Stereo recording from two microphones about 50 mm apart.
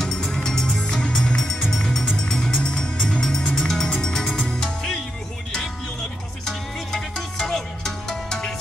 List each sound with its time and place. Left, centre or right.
0.0 s music: centre
6.4 s music: centre